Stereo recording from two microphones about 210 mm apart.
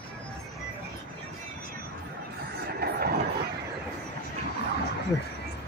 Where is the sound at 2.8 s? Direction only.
50° right (ahead or behind).